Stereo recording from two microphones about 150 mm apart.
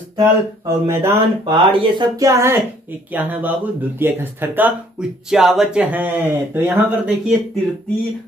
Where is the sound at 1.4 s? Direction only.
30° right (ahead or behind); by 7.3 s 5° right (ahead or behind).